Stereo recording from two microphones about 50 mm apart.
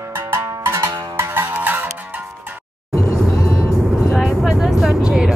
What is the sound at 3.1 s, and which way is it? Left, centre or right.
Vehicle, left.